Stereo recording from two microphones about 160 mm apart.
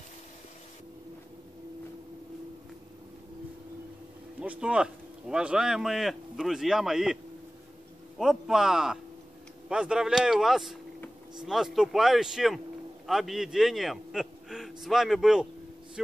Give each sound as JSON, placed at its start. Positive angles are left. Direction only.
{"t": 4.4, "sound": "speech", "side_deg": -5}
{"t": 8.2, "sound": "a man's voice", "side_deg": -5}